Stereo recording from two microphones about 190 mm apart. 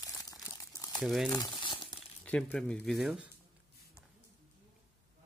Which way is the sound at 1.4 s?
25° left (ahead or behind).